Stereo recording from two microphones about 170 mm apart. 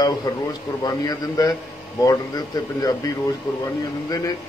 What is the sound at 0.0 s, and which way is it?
A man's voice, 25° left (ahead or behind).